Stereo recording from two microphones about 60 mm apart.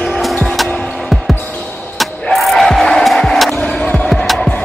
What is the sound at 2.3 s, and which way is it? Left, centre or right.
Crowd, centre.